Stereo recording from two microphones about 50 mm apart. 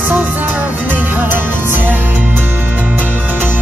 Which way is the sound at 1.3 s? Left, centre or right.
Right.